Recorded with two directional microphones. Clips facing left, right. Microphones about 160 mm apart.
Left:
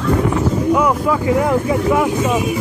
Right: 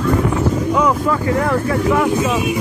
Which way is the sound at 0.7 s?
10° left (ahead or behind).